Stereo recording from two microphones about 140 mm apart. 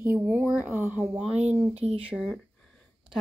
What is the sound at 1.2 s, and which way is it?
Speech, 50° right (ahead or behind).